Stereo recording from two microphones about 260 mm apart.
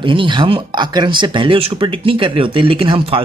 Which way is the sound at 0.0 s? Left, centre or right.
Centre.